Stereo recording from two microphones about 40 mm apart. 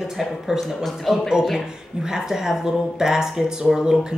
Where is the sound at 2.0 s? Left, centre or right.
Centre.